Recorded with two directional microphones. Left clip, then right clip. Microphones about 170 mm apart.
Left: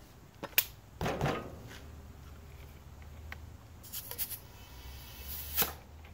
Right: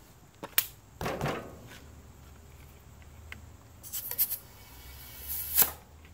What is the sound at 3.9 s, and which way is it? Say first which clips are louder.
Writing: right 4 dB; centre (ahead or behind).